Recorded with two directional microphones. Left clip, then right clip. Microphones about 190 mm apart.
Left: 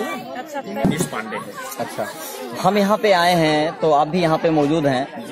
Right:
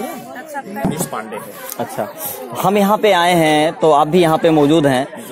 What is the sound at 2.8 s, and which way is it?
A man's voice, 30° right (ahead or behind).